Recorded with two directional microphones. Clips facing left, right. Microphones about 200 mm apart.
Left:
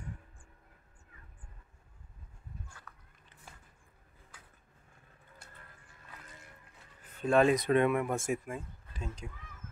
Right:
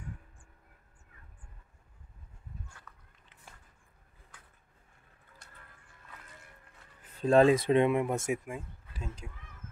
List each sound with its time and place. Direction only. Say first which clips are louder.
7.2 s speech: right 3 dB; 30° right (ahead or behind); by 9.3 s 5° right (ahead or behind)